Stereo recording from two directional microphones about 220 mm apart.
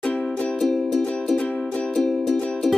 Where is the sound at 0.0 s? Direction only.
5° left (ahead or behind).